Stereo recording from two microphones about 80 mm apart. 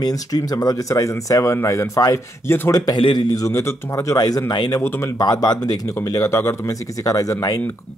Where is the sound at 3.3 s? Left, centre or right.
Left.